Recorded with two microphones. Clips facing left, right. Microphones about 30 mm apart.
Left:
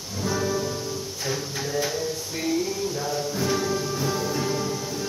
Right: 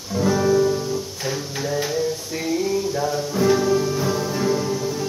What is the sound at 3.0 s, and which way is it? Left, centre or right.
Music, right.